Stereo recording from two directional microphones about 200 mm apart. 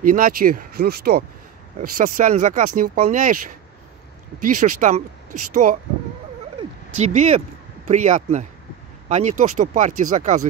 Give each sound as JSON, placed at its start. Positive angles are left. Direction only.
{"t": 0.0, "sound": "speech", "side_deg": -45}
{"t": 7.0, "sound": "speech", "side_deg": -35}